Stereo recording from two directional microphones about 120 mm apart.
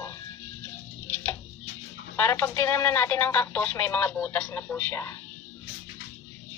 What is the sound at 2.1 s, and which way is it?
Speech, 20° left (ahead or behind).